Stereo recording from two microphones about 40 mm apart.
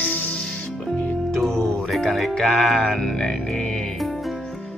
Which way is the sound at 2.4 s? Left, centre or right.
Centre.